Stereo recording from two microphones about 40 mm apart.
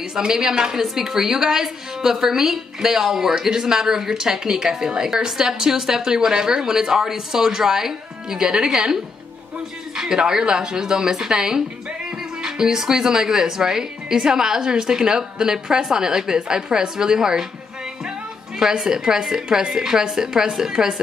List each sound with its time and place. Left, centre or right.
0.1 s a woman's voice: centre
9.9 s a woman's voice: centre
18.6 s a woman's voice: centre